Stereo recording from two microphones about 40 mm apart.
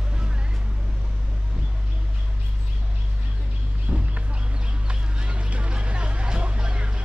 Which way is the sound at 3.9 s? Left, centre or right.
Right.